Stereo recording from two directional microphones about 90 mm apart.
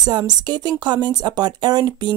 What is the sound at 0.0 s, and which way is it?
Speech, 50° right (ahead or behind).